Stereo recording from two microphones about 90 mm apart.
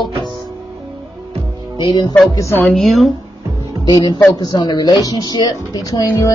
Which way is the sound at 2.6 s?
Centre (ahead or behind).